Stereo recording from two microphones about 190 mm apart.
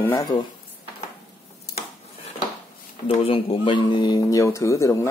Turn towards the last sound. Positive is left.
turn(degrees=15)  # may be behind; listen again after turning